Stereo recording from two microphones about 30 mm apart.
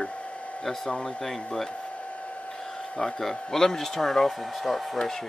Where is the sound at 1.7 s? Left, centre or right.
Left.